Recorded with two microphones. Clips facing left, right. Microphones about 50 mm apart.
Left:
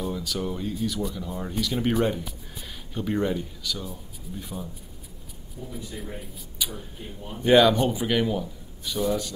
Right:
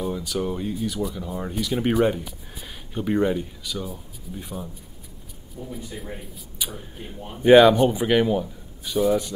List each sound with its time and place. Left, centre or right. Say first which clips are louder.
0.0 s speech: right 3 dB; centre
5.6 s speech: right 3 dB; right
7.4 s speech: right 5 dB; centre